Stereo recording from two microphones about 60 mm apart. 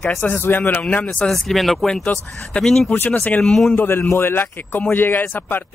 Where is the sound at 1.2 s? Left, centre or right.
Centre.